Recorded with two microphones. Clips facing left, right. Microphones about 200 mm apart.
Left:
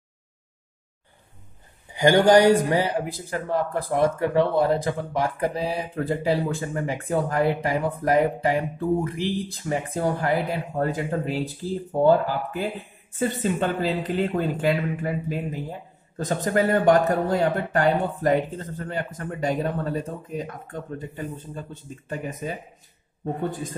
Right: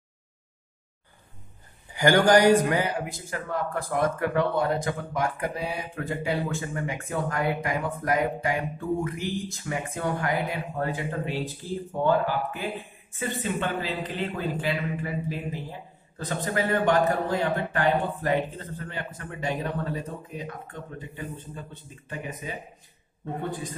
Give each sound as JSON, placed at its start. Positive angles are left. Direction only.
{"t": 1.9, "sound": "speech", "side_deg": 20}
{"t": 13.2, "sound": "speech", "side_deg": 40}
{"t": 22.1, "sound": "speech", "side_deg": 45}